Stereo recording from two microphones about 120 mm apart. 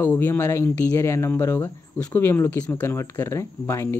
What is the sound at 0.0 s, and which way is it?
Speech, 20° left (ahead or behind).